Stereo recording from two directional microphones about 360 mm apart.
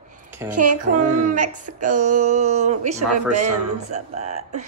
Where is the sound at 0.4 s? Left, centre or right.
Centre.